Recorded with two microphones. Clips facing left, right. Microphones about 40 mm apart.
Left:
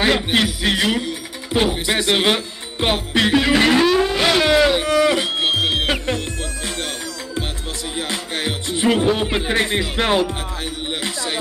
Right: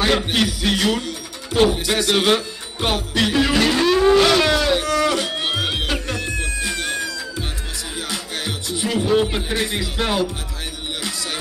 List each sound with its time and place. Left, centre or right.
0.0 s speech: centre
3.1 s music: left
3.8 s a sound: centre
4.3 s music: centre; by 6.7 s left
8.1 s music: left
9.3 s speech: left
11.0 s music: left